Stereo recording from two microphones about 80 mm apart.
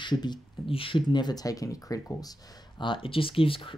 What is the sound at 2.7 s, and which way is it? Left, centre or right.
Speech, left.